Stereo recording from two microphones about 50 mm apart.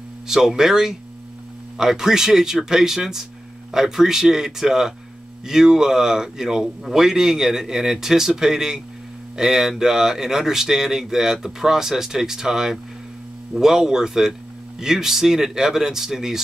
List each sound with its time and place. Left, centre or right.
0.3 s a man's voice: centre